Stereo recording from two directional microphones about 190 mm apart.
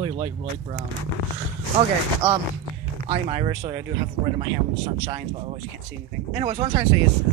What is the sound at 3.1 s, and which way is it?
Speech, 25° right (ahead or behind).